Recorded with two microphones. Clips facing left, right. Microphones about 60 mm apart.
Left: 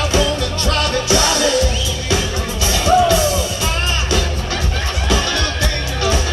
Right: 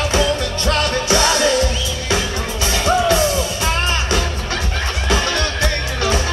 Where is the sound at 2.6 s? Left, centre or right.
Right.